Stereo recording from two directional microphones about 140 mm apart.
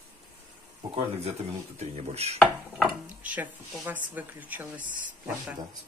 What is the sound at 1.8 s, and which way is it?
Speech, 50° right (ahead or behind).